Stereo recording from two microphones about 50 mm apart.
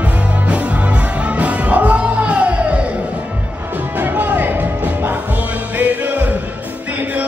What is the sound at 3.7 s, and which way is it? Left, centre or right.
Music, right.